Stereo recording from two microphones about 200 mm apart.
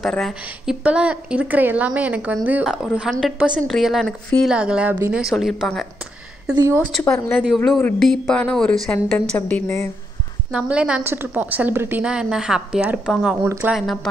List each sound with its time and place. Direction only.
0.0 s a woman's voice: centre (ahead or behind)
6.5 s a woman's voice: 15° right (ahead or behind)
7.1 s speech: 10° left (ahead or behind)
7.4 s a woman's voice: centre (ahead or behind)
10.5 s a woman's voice: 5° right (ahead or behind)